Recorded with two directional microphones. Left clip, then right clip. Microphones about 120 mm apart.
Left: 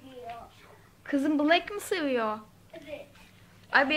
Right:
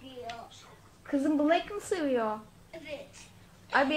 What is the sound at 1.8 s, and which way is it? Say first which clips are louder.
Speech: left 1 dB; 15° left (ahead or behind).